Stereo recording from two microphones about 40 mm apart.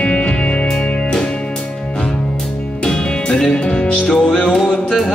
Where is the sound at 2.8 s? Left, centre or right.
Centre.